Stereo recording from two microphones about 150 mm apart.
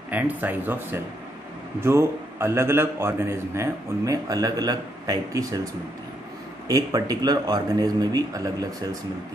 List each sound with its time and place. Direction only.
0.1 s a man's voice: 10° right (ahead or behind)
6.7 s speech: 25° right (ahead or behind)